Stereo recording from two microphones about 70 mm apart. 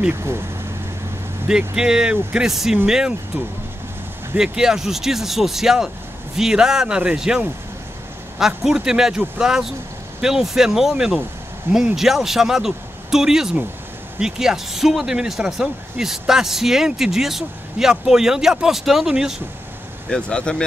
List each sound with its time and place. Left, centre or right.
0.1 s speech: right
1.8 s speech: centre
4.4 s speech: centre
20.1 s speech: centre